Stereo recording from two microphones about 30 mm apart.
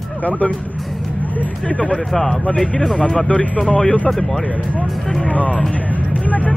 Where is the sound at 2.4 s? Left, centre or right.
Left.